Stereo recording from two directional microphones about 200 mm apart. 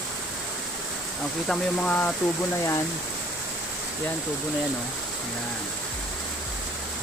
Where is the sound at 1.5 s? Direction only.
5° left (ahead or behind).